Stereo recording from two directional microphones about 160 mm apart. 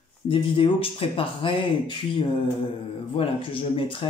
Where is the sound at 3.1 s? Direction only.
35° left (ahead or behind).